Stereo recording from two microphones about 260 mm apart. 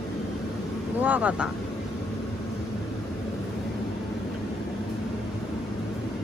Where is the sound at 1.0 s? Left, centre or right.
Centre.